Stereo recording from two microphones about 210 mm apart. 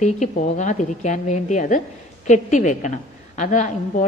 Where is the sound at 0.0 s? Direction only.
35° left (ahead or behind).